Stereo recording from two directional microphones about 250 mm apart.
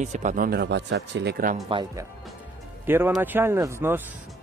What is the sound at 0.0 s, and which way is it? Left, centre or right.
Speech, right.